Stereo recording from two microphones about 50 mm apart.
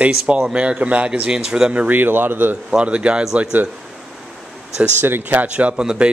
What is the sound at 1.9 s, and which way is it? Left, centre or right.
Speech, right.